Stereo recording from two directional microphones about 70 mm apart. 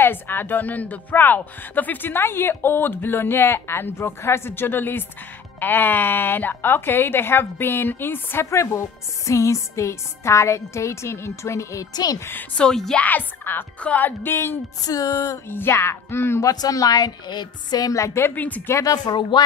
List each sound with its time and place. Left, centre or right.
0.0 s speech: left
8.5 s speech: left
11.9 s speech: left
12.5 s a woman's voice: centre
13.0 s speech: left
14.8 s a woman's voice: left
15.5 s speech: left
16.4 s a woman's voice: left
18.2 s speech: left
18.8 s a woman's voice: left